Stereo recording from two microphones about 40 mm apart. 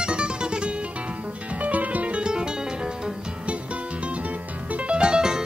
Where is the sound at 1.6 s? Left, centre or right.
Right.